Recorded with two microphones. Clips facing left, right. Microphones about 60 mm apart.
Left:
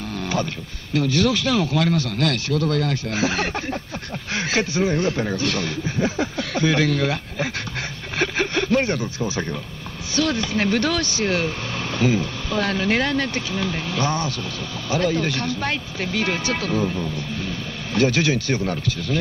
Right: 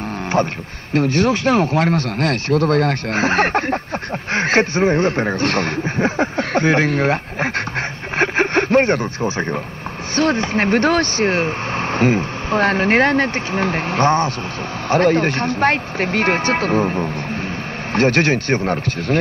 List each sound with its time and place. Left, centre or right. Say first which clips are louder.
0.4 s speech: right 7 dB; right
8.2 s a sound: right 5 dB; right
10.1 s speech: right 4 dB; right